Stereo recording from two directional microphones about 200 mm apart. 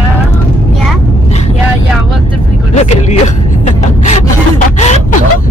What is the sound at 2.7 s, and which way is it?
Speech, 35° left (ahead or behind).